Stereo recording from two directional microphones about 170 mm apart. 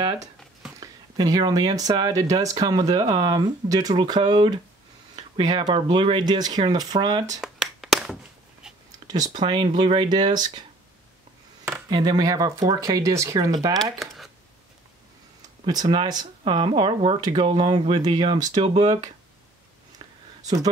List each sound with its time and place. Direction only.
0.7 s speech: 20° right (ahead or behind)
7.3 s a sound: centre (ahead or behind)
9.0 s speech: 20° right (ahead or behind)
11.6 s speech: 20° right (ahead or behind)
13.9 s a sound: centre (ahead or behind)
15.6 s speech: 25° right (ahead or behind)